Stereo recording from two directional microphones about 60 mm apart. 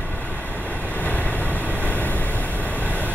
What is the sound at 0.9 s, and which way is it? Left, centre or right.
Vehicle, left.